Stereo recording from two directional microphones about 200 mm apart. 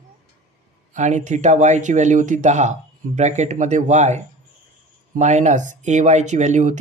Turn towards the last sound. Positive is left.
turn(degrees=-35)  # may be behind; listen again after turning